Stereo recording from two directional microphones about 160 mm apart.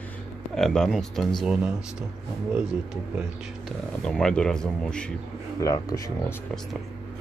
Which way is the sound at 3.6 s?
5° left (ahead or behind).